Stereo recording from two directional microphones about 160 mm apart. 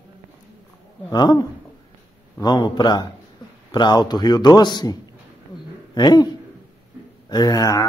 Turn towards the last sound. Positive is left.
turn(degrees=20)  # may be behind; listen again after turning